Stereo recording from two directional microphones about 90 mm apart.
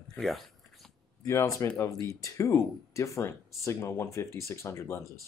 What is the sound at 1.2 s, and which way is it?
Speech, 35° left (ahead or behind).